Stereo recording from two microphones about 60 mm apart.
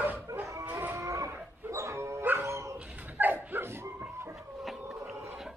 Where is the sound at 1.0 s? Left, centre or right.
Right.